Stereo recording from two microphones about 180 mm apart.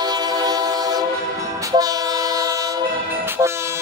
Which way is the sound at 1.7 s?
20° right (ahead or behind).